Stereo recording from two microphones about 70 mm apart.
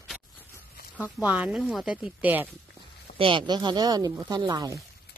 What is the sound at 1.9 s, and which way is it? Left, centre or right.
Speech, centre.